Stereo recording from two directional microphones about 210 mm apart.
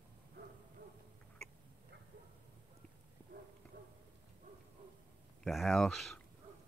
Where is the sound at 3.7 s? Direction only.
50° right (ahead or behind).